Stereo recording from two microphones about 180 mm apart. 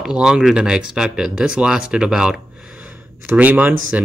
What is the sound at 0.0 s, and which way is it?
A man's voice, 5° right (ahead or behind).